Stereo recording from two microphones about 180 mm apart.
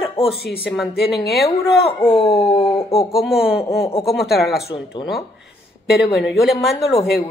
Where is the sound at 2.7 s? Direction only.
15° left (ahead or behind).